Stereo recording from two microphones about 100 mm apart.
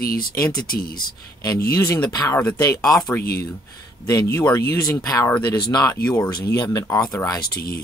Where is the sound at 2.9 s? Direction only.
40° left (ahead or behind).